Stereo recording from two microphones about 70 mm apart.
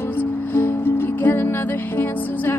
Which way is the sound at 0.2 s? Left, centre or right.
Left.